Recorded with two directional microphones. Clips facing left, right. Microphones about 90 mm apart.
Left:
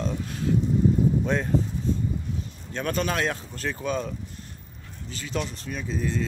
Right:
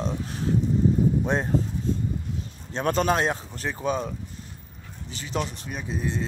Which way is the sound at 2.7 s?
30° right (ahead or behind).